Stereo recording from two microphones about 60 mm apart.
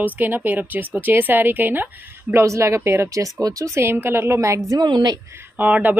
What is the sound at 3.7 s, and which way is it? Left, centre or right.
Speech, right.